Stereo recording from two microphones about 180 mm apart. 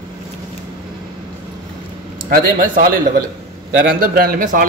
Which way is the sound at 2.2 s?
50° right (ahead or behind).